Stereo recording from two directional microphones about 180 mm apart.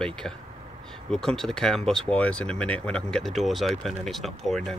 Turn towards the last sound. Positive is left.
turn(degrees=0)  # may be behind; listen again after turning